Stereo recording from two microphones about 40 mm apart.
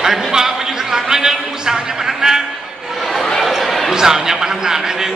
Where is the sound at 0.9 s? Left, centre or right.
Centre.